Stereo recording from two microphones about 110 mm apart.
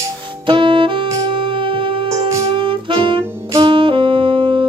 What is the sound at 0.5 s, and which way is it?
Saxophone, 50° right (ahead or behind).